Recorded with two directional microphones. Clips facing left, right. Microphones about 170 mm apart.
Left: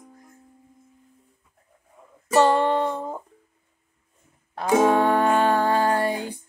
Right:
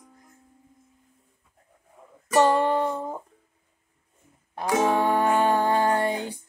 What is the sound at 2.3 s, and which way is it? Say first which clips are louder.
Music: left 1 dB; 10° right (ahead or behind).